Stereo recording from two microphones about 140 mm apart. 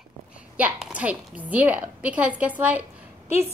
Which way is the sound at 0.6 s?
10° right (ahead or behind).